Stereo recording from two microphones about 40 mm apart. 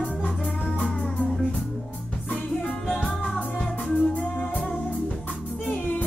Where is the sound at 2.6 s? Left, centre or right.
Left.